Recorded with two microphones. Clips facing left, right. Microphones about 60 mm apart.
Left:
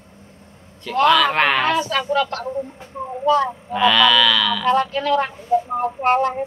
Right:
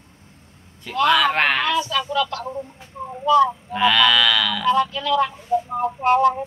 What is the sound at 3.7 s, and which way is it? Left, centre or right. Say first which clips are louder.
Cattle: left 5 dB; centre.